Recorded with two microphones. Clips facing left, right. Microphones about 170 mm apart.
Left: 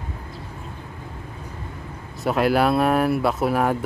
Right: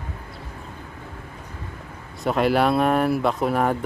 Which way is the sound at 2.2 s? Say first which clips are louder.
Even; centre (ahead or behind).